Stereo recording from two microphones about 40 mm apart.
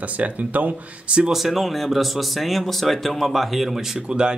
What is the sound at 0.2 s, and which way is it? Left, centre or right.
Speech, right.